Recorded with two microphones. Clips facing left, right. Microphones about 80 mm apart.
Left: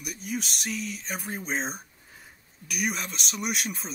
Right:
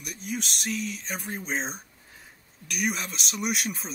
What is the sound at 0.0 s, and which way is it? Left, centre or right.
Speech, centre.